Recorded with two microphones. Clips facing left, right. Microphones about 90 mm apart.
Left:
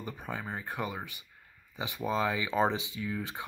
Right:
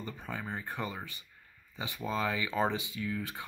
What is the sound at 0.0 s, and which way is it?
Speech, 15° left (ahead or behind).